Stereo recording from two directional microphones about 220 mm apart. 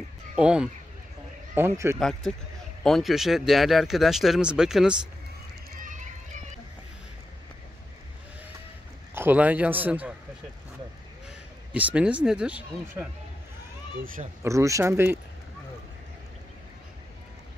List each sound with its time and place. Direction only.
0.4 s a man's voice: 5° right (ahead or behind)
2.0 s speech: centre (ahead or behind)
5.8 s run: 35° right (ahead or behind)
9.1 s a man's voice: 10° right (ahead or behind)
11.2 s speech: 5° right (ahead or behind)
14.4 s a man's voice: 15° right (ahead or behind)